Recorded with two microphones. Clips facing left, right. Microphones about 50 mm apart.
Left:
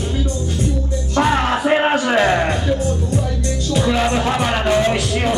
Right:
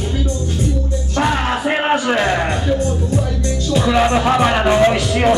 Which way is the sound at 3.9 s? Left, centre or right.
Centre.